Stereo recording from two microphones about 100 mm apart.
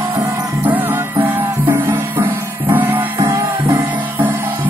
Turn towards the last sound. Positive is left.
turn(degrees=-35)  # may be behind; listen again after turning